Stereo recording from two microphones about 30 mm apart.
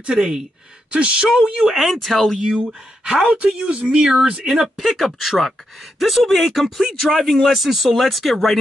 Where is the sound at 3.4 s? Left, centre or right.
Right.